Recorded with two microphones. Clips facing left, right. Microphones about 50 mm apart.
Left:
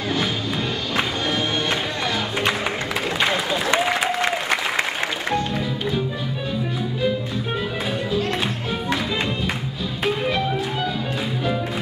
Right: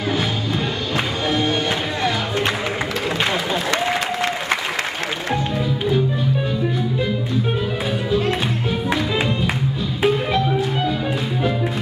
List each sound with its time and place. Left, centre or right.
0.9 s music: centre
3.8 s applause: centre
8.1 s music: centre
10.0 s music: centre